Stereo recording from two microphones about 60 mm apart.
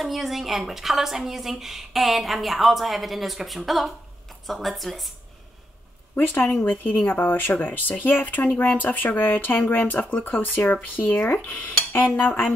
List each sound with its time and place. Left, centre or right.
0.0 s a woman's voice: centre
6.1 s speech: left